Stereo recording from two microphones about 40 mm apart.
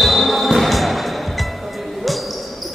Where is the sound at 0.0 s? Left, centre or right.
Centre.